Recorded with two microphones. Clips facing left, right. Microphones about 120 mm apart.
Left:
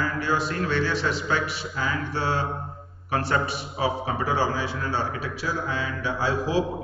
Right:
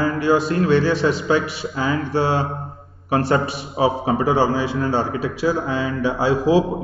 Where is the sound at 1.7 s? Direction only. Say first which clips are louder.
Right 9 dB; 65° right (ahead or behind).